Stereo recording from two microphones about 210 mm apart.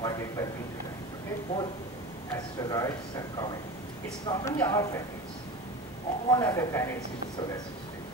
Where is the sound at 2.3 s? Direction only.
15° left (ahead or behind).